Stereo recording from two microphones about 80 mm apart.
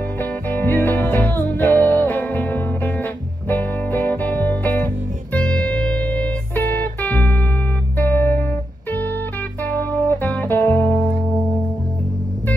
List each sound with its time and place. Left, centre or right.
0.2 s music: left
9.7 s music: left